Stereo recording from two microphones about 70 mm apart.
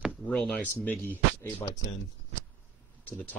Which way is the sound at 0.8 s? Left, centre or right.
Left.